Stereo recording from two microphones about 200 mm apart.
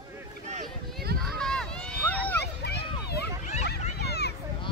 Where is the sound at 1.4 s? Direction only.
5° left (ahead or behind).